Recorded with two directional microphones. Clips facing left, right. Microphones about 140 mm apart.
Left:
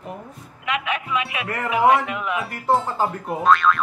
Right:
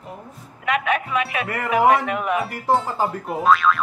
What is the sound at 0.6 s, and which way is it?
A man's voice, 45° right (ahead or behind).